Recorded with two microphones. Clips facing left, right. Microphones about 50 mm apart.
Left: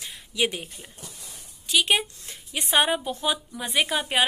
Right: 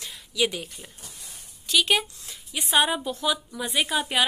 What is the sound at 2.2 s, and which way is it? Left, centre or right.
A woman's voice, left.